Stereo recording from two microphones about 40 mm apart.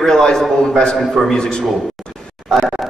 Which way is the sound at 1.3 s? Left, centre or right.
Centre.